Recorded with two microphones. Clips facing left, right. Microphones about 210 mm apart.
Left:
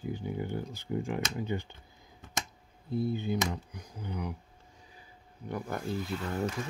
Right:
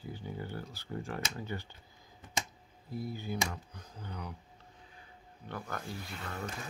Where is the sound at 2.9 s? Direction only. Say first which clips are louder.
Left 7 dB; 25° left (ahead or behind).